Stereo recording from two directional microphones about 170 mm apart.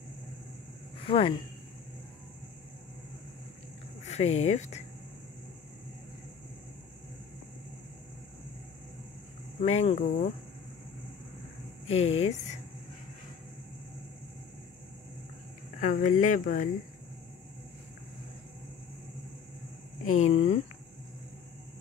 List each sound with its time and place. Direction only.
0.9 s a sound: 30° left (ahead or behind)
4.0 s speech: 40° left (ahead or behind)
9.6 s speech: 40° left (ahead or behind)
11.9 s speech: 35° left (ahead or behind)
15.8 s speech: 50° left (ahead or behind)
20.1 s speech: 40° left (ahead or behind)